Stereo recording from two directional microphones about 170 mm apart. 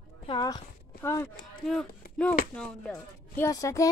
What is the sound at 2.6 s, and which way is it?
Speech, 5° left (ahead or behind).